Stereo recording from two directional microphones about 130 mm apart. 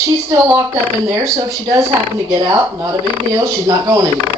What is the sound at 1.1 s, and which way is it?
Speech, 25° right (ahead or behind).